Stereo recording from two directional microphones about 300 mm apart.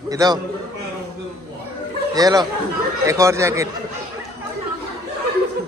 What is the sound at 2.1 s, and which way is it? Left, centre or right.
Speech, centre.